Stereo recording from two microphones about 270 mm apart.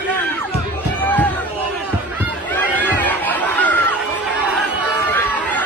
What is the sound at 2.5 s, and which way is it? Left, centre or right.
Chatter, centre.